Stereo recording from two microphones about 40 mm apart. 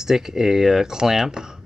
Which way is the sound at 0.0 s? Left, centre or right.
Centre.